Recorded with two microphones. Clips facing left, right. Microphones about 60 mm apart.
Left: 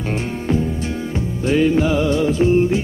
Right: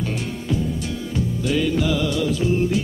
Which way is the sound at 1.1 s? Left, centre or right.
Left.